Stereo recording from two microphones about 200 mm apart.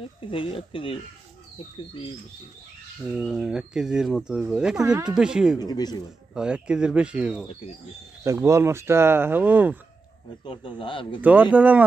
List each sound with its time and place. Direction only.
0.2 s speech: 25° left (ahead or behind)
3.0 s speech: centre (ahead or behind)
5.6 s speech: 20° left (ahead or behind)
6.3 s speech: 5° right (ahead or behind)
10.4 s speech: 25° left (ahead or behind)
11.1 s speech: 5° right (ahead or behind)